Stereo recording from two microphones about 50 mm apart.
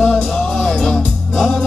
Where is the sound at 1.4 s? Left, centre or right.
Centre.